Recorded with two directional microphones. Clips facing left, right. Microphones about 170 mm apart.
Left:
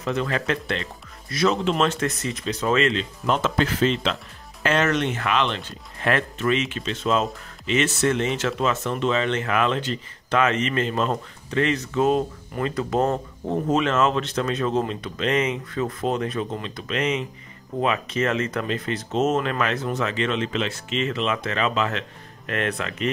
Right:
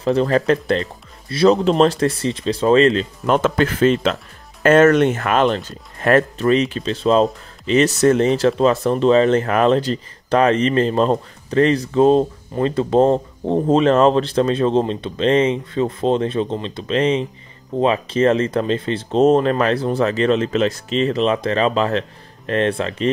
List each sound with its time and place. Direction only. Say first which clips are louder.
0.0 s speech: right 9 dB; 35° right (ahead or behind)
3.3 s speech: right 5 dB; 55° right (ahead or behind); by 23.0 s 30° right (ahead or behind)